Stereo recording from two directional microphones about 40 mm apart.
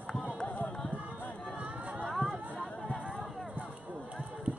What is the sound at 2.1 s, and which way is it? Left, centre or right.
Chatter, centre.